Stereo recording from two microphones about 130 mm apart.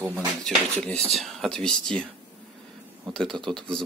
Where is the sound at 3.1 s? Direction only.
5° left (ahead or behind).